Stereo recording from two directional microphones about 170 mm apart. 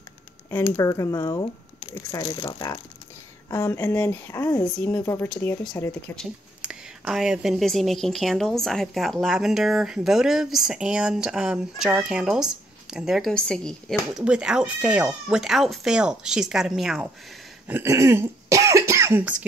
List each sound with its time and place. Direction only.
0.7 s speech: 20° left (ahead or behind)
3.4 s speech: 15° left (ahead or behind)
4.9 s speech: 20° left (ahead or behind)
5.3 s a woman's voice: 10° left (ahead or behind)
6.1 s a woman's voice: 5° right (ahead or behind)
17.6 s speech: 15° right (ahead or behind)